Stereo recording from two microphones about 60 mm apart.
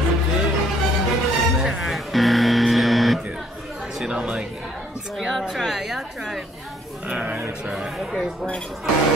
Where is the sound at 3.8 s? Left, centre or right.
Centre.